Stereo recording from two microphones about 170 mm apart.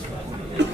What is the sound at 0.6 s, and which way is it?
Chuckle, 90° right.